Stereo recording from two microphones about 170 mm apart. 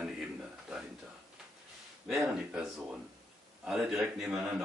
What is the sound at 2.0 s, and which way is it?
Speech, centre (ahead or behind).